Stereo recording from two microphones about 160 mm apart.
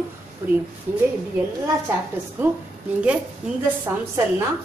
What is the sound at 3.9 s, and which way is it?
Speech, 15° right (ahead or behind).